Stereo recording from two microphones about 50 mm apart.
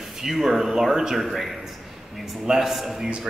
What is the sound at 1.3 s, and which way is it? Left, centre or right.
A man's voice, centre.